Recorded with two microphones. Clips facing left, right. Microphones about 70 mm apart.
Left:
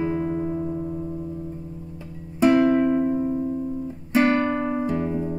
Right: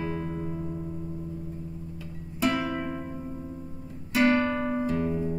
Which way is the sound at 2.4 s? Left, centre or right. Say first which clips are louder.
Left 10 dB; left.